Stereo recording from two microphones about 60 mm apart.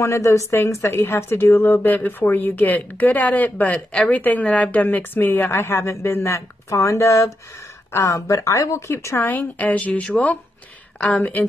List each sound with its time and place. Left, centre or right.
0.0 s a woman's voice: left
9.3 s speech: left